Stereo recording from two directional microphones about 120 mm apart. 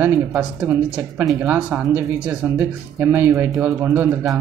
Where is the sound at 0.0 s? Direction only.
15° right (ahead or behind).